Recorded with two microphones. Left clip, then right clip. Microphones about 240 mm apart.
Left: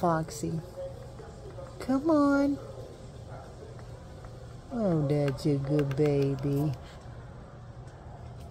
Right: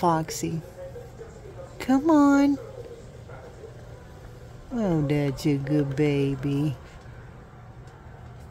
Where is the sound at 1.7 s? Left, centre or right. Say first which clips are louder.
Right 6 dB; right.